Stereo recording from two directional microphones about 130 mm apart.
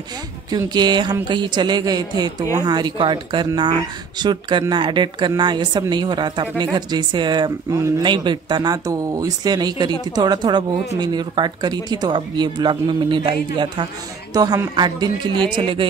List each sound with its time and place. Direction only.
0.5 s speech: 35° right (ahead or behind)